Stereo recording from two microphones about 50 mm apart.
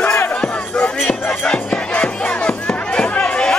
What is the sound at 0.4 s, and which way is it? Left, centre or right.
Music, centre.